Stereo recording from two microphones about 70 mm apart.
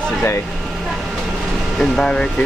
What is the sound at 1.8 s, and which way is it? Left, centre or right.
Speech, centre.